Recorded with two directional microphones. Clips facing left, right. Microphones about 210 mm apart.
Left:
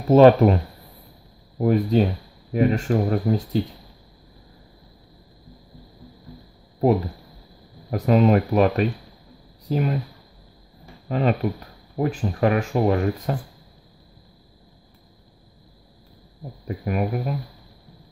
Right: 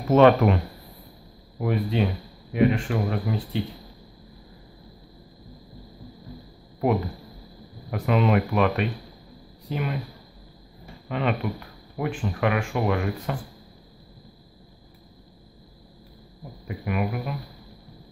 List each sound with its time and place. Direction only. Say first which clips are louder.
0.1 s speech: left 4 dB; 35° left (ahead or behind)
1.6 s speech: left 6 dB; 40° left (ahead or behind)
7.9 s speech: left 4 dB; 35° left (ahead or behind)
11.1 s speech: left 4 dB; 35° left (ahead or behind)
16.6 s speech: left 3 dB; 40° left (ahead or behind)